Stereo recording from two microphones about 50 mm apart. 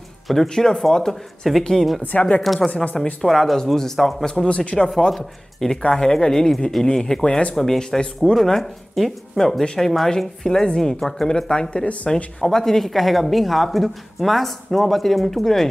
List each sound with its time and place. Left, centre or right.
0.3 s speech: centre
2.1 s speech: left
3.2 s a woman's voice: centre
4.5 s speech: left
4.8 s speech: centre
7.5 s speech: centre; by 12.1 s left
12.4 s a woman's voice: centre